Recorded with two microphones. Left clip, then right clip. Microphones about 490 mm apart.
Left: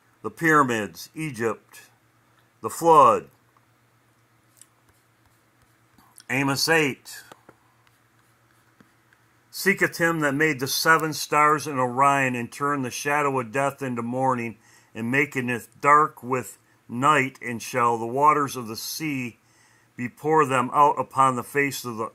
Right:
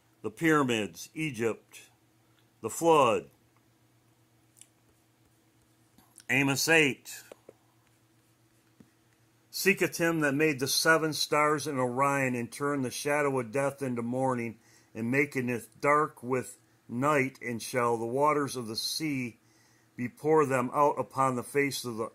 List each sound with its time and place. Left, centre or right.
0.2 s speech: right
6.1 s speech: right
9.5 s speech: right